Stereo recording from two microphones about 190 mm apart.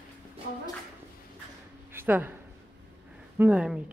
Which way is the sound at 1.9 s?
10° right (ahead or behind).